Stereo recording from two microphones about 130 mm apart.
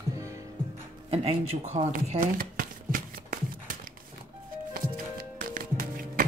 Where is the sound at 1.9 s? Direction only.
90° right.